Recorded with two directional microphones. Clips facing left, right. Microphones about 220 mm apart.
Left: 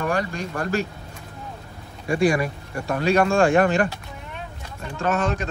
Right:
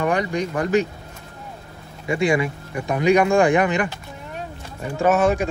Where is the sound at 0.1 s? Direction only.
20° right (ahead or behind).